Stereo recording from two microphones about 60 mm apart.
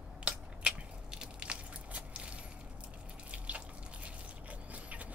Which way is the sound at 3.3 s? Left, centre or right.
Right.